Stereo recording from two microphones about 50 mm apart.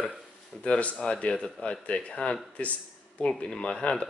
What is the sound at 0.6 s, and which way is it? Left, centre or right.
Speech, left.